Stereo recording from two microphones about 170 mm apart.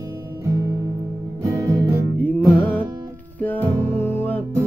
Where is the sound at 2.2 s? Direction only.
10° left (ahead or behind).